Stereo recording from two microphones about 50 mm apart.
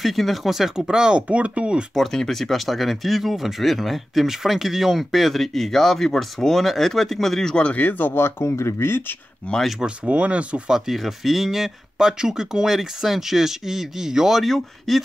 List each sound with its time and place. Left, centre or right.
0.0 s speech: centre
0.7 s speech: centre
2.0 s speech: centre
7.7 s speech: left
8.1 s speech: left
9.4 s speech: left
9.8 s speech: right
10.7 s speech: centre